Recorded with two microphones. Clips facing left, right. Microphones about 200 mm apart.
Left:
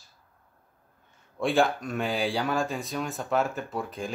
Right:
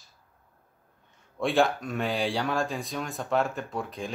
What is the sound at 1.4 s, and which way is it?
Speech, centre (ahead or behind).